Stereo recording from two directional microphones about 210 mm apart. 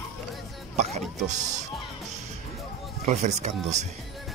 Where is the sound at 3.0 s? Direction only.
35° right (ahead or behind).